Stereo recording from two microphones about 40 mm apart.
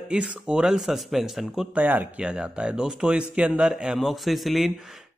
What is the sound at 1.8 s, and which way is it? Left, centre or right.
Speech, right.